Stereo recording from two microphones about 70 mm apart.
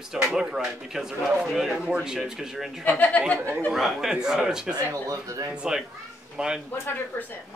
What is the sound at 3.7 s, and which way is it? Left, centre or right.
Speech, centre.